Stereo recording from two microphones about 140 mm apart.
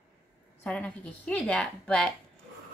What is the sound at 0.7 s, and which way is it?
Speech, 10° left (ahead or behind).